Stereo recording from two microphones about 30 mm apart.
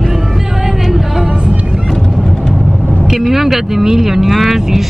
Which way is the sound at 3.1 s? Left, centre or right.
Centre.